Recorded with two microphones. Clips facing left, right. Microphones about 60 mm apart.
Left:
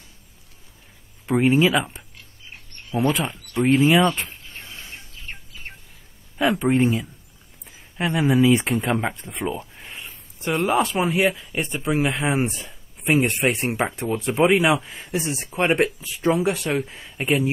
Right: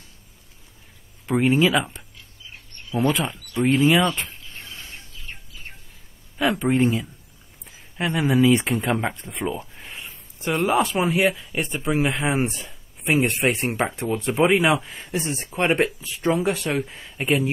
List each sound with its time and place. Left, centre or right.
1.2 s speech: centre
2.5 s a sound: left
3.5 s speech: left
4.4 s a sound: left
4.6 s bird: left
6.3 s speech: centre